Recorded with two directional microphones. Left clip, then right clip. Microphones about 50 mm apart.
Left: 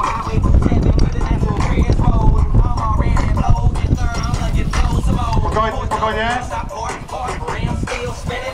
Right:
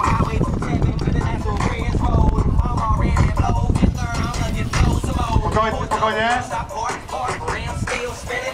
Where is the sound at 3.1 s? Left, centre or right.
Left.